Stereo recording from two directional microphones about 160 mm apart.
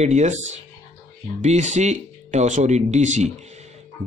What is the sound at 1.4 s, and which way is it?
Speech, 45° right (ahead or behind).